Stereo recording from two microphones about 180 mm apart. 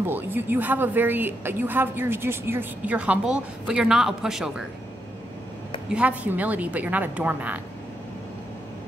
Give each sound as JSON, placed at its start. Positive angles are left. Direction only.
{"t": 0.0, "sound": "a woman's voice", "side_deg": -10}
{"t": 5.9, "sound": "a woman's voice", "side_deg": -5}